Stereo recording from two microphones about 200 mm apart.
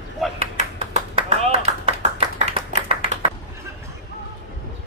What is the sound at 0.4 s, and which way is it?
Clapping, 35° right (ahead or behind).